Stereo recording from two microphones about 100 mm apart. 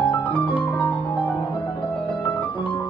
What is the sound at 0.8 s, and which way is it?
Music, 15° left (ahead or behind).